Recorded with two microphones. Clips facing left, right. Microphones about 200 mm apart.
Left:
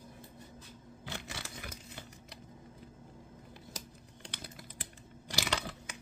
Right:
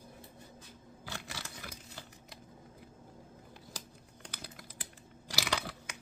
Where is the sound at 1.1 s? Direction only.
25° left (ahead or behind).